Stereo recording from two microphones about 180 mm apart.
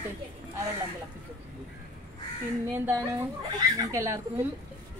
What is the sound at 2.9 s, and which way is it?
Speech, 15° right (ahead or behind).